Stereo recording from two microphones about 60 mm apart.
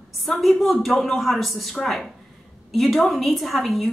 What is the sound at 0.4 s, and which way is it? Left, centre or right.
A woman's voice, centre.